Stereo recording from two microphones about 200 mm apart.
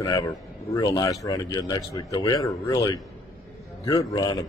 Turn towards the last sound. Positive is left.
turn(degrees=20)  # may be behind; listen again after turning